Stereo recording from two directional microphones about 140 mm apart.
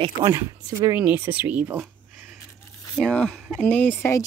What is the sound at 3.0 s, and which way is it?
Speech, 5° left (ahead or behind).